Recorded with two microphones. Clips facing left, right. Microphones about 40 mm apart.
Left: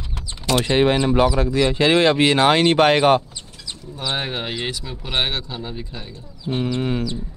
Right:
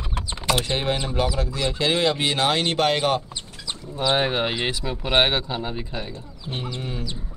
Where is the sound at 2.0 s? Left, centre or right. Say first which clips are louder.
Left 6 dB; left.